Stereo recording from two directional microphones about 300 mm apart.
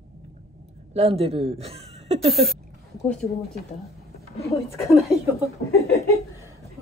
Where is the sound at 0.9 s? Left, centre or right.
Centre.